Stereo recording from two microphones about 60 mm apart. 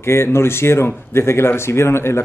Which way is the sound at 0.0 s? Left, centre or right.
Left.